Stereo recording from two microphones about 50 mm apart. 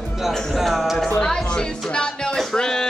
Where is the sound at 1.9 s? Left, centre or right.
Centre.